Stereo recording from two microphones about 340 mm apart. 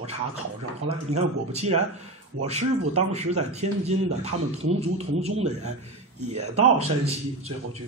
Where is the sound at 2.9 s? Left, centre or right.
Centre.